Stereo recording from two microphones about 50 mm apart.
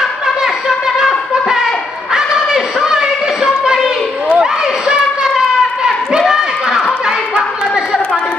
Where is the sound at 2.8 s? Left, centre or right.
Centre.